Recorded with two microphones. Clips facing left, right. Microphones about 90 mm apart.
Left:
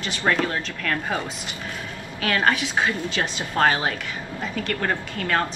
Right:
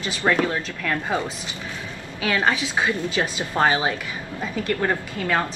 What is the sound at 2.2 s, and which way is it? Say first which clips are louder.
A woman's voice: even; 15° right (ahead or behind).